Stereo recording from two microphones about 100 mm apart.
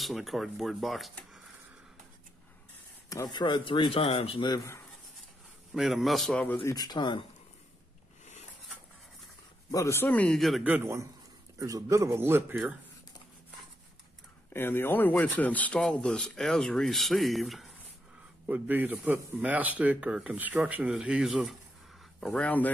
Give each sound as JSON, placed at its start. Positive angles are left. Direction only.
{"t": 0.0, "sound": "speech", "side_deg": 0}
{"t": 3.3, "sound": "speech", "side_deg": 45}
{"t": 5.8, "sound": "speech", "side_deg": 0}
{"t": 6.4, "sound": "speech", "side_deg": 20}
{"t": 6.7, "sound": "speech", "side_deg": 40}
{"t": 9.7, "sound": "speech", "side_deg": 30}
{"t": 10.3, "sound": "speech", "side_deg": 0}
{"t": 10.6, "sound": "speech", "side_deg": -15}
{"t": 11.5, "sound": "a man's voice", "side_deg": -35}
{"t": 14.5, "sound": "speech", "side_deg": 20}
{"t": 18.5, "sound": "speech", "side_deg": -20}
{"t": 22.2, "sound": "speech", "side_deg": 10}